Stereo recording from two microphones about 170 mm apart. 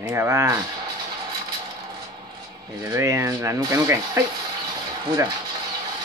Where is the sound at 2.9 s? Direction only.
15° right (ahead or behind).